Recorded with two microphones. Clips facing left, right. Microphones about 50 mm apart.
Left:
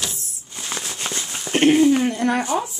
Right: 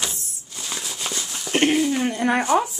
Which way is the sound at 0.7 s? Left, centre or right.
Left.